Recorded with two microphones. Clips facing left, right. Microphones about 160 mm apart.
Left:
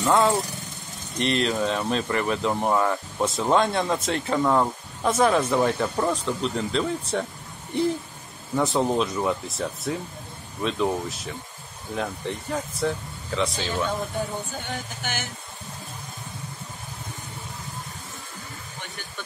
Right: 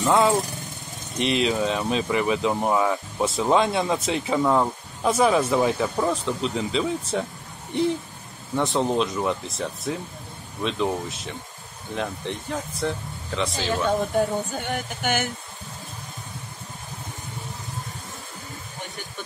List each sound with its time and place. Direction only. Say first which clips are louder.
0.0 s speech: right 1 dB; 5° right (ahead or behind)
15.0 s speech: right 11 dB; 55° right (ahead or behind)